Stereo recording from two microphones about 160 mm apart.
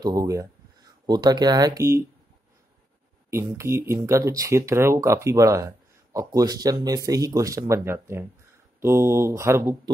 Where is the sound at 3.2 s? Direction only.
20° right (ahead or behind).